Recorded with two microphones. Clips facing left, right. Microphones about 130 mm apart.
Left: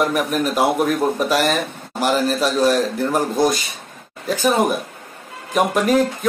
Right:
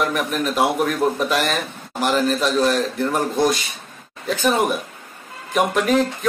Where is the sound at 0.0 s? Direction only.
5° left (ahead or behind).